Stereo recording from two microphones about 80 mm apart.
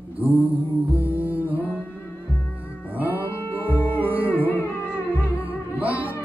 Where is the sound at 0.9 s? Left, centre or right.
Right.